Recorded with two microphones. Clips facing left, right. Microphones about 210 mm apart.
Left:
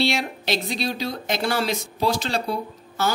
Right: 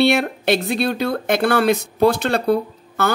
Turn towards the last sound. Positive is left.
turn(degrees=-60)  # may be behind; listen again after turning